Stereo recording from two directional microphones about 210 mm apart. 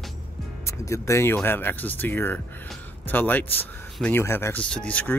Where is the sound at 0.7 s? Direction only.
15° left (ahead or behind).